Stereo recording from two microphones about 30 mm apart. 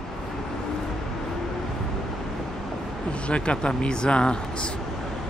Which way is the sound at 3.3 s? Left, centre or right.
Left.